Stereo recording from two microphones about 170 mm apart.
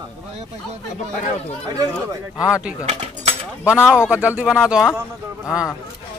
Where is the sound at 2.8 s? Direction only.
35° right (ahead or behind).